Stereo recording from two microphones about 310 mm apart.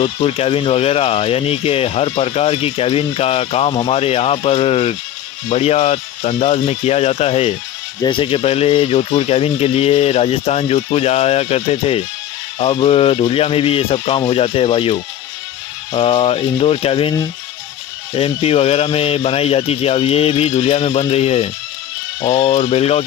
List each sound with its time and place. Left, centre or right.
0.0 s speech: centre